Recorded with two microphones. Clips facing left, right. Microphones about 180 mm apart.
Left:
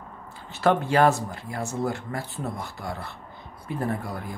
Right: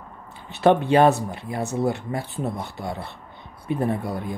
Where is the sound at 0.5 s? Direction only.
20° right (ahead or behind).